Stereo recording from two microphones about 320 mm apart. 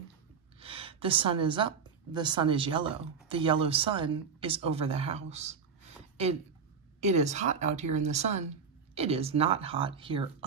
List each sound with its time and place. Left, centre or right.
0.6 s gasp: centre
2.1 s speech: centre
7.0 s a woman's voice: right